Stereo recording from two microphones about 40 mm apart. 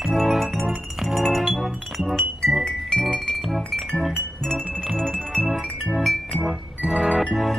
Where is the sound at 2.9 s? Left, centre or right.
Centre.